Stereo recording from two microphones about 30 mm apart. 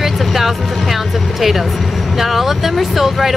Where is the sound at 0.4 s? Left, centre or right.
Centre.